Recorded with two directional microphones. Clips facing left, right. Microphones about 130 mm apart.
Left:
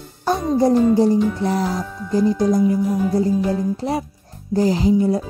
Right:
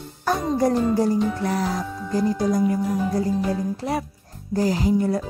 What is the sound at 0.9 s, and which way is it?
Speech, 25° left (ahead or behind).